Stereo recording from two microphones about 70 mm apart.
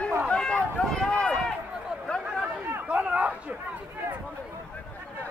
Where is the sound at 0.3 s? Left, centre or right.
Centre.